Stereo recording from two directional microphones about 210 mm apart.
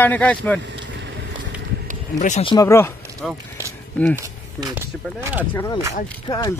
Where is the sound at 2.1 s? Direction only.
35° left (ahead or behind).